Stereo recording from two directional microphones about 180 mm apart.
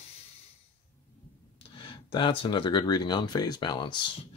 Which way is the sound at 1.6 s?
30° left (ahead or behind).